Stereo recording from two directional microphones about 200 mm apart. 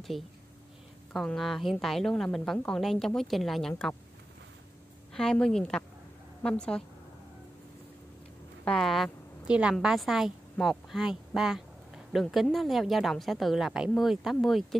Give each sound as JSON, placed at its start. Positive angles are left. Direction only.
{"t": 1.1, "sound": "a woman's voice", "side_deg": 0}
{"t": 5.1, "sound": "a woman's voice", "side_deg": 5}
{"t": 8.6, "sound": "a woman's voice", "side_deg": 0}